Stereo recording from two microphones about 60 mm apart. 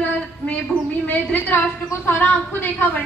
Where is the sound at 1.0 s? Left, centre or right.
Left.